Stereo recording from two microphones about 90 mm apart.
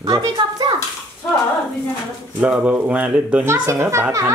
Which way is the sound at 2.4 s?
15° right (ahead or behind).